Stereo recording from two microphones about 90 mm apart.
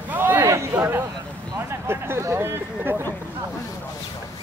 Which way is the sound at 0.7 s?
25° right (ahead or behind).